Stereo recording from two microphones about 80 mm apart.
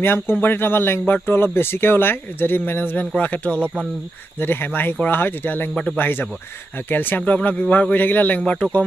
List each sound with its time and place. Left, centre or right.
0.0 s speech: left
4.4 s speech: left